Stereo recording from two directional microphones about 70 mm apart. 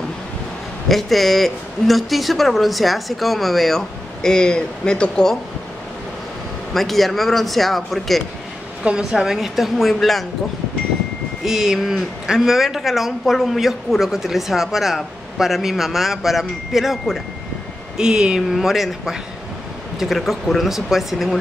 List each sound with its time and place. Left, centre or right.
0.8 s speech: centre
6.7 s speech: centre
8.8 s speech: centre
11.4 s speech: centre